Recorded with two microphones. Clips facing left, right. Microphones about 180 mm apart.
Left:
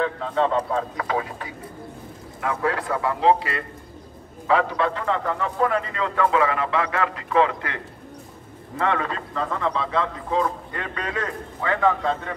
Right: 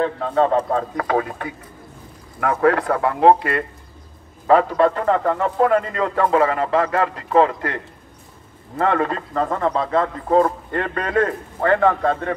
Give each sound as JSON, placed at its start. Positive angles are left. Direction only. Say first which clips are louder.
{"t": 0.0, "sound": "a man's voice", "louder": "right 4 dB", "side_deg": -40}